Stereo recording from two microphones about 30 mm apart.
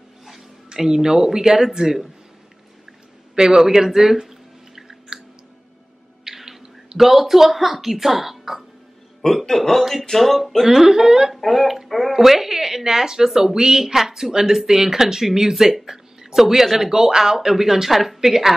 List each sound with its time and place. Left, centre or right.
0.7 s speech: centre
3.3 s drip: centre
6.2 s a sound: centre
7.0 s speech: centre
9.3 s speech: centre
10.6 s speech: centre
11.4 s speech: centre